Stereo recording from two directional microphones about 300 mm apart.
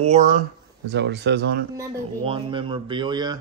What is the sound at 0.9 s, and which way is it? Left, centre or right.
Speech, right.